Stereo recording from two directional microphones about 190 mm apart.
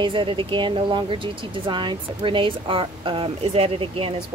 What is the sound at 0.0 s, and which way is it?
A woman's voice, 25° right (ahead or behind).